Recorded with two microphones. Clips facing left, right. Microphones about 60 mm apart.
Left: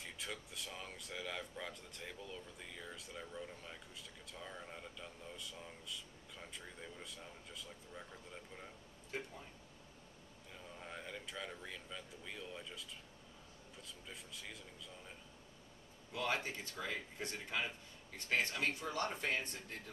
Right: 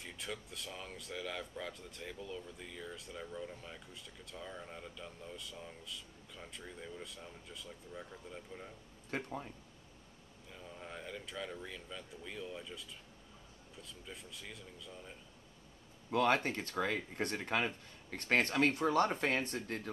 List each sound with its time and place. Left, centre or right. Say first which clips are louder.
0.0 s speech: right 2 dB; centre
9.1 s speech: right 6 dB; right
10.5 s speech: right 2 dB; centre
16.1 s speech: right 8 dB; right